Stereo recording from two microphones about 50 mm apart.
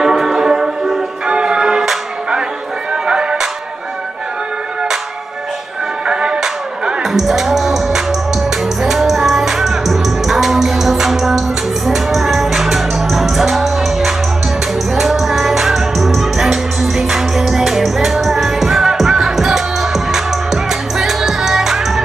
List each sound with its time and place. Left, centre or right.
0.0 s music: centre
6.0 s music: centre